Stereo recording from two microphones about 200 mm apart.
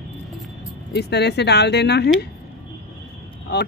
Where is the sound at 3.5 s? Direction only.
55° left (ahead or behind).